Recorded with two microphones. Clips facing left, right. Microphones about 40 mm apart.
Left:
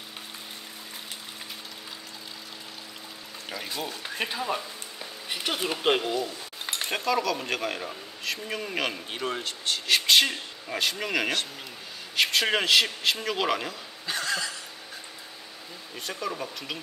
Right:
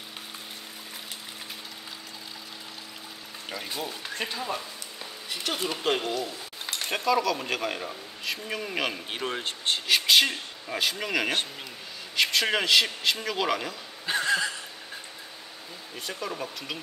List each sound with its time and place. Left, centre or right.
3.4 s speech: centre
4.0 s speech: centre
5.9 s speech: centre
6.6 s a sound: centre
6.9 s speech: centre
9.4 s speech: right
9.8 s speech: centre
14.0 s a sound: right
16.0 s speech: centre